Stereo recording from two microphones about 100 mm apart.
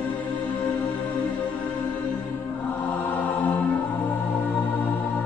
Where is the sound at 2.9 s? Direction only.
15° left (ahead or behind).